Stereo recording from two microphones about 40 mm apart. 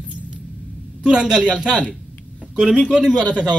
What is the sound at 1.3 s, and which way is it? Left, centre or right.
Speech, right.